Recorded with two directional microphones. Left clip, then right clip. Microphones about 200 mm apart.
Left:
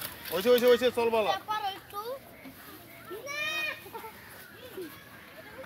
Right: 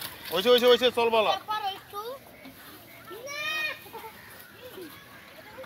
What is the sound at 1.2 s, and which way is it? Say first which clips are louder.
Children playing: right 3 dB; 40° right (ahead or behind).